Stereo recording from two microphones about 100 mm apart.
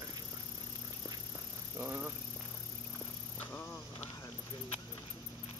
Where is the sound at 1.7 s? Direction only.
20° right (ahead or behind).